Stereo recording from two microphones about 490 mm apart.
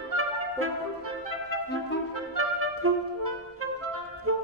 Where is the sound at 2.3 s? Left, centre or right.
Right.